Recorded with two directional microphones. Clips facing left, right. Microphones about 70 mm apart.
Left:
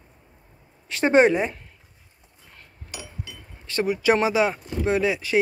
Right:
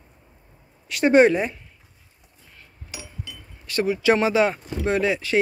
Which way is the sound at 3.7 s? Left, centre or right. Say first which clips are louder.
Right 1 dB; left.